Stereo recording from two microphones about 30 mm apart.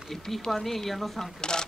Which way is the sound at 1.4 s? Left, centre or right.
Left.